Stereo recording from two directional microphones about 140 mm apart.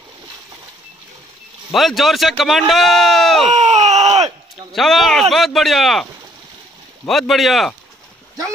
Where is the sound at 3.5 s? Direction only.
60° right (ahead or behind).